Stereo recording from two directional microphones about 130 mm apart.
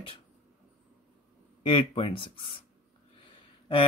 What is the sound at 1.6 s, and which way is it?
Speech, 40° left (ahead or behind).